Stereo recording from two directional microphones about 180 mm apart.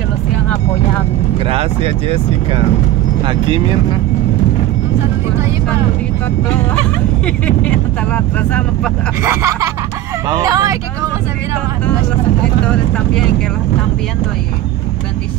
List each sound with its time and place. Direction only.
1.5 s speech: 30° right (ahead or behind)
7.2 s speech: 10° left (ahead or behind)
9.2 s speech: 15° right (ahead or behind)